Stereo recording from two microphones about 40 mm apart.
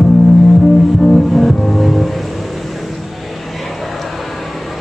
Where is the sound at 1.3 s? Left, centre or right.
Centre.